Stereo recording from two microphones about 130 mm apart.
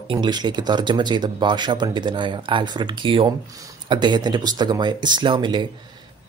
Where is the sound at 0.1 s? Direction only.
35° right (ahead or behind).